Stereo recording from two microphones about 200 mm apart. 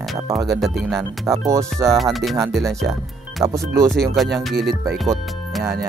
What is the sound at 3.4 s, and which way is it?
Speech, 15° right (ahead or behind).